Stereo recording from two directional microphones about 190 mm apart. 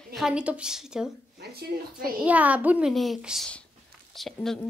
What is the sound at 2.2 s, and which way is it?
A child's voice, 5° right (ahead or behind).